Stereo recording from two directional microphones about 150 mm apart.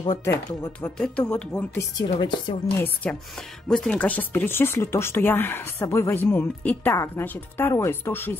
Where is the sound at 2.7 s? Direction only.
15° left (ahead or behind).